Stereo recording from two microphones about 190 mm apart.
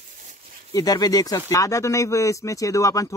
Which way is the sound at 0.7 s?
20° left (ahead or behind).